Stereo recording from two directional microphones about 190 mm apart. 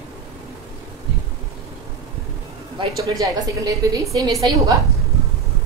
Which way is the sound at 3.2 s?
15° right (ahead or behind).